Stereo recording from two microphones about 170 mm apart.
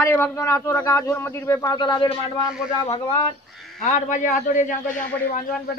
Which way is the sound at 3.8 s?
45° left (ahead or behind).